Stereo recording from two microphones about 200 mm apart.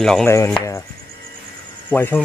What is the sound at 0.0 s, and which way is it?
Speech, centre (ahead or behind).